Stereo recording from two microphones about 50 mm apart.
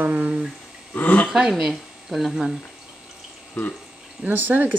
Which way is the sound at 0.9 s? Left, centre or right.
Left.